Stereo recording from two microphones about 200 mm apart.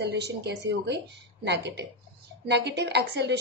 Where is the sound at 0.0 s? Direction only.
55° right (ahead or behind).